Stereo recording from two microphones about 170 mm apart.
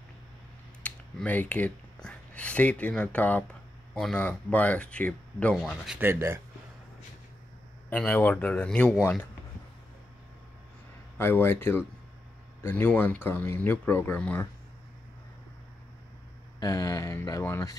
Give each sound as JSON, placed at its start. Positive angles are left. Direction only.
{"t": 0.8, "sound": "speech", "side_deg": 10}
{"t": 5.9, "sound": "speech", "side_deg": -15}
{"t": 7.9, "sound": "speech", "side_deg": 10}
{"t": 11.1, "sound": "speech", "side_deg": 15}
{"t": 16.5, "sound": "speech", "side_deg": 20}